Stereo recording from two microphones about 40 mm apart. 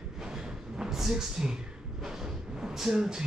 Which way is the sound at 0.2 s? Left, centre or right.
Centre.